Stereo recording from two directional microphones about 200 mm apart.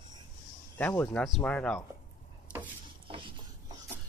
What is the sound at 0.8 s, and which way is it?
Speech, 10° left (ahead or behind).